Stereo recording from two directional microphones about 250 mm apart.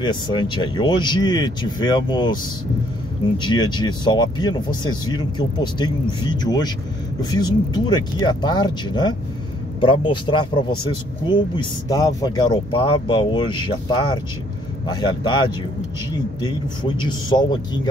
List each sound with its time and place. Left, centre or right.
0.0 s speech: centre
3.3 s speech: centre